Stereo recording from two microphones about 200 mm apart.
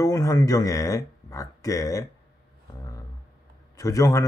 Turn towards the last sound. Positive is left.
turn(degrees=15)  # may be behind; listen again after turning